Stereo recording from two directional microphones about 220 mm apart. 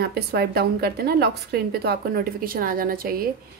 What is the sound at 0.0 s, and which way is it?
A woman's voice, 45° right (ahead or behind).